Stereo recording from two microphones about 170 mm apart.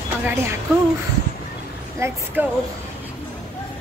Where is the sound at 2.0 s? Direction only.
10° right (ahead or behind).